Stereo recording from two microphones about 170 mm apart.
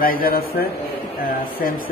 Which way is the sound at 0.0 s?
60° left (ahead or behind).